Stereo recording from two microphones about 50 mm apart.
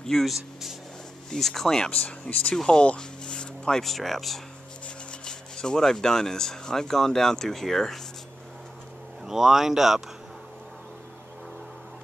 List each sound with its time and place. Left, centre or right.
0.0 s speech: centre
0.3 s speech: centre
2.0 s speech: left
2.5 s speech: centre
3.8 s speech: centre
4.8 s speech: centre
9.2 s speech: centre